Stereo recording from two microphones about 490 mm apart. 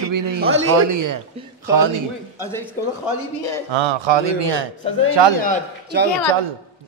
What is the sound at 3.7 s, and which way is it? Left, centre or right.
Speech, right.